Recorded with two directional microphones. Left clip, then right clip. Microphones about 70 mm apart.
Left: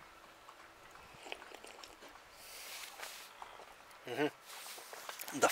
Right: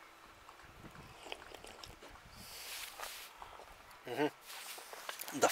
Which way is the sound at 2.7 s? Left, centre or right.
Right.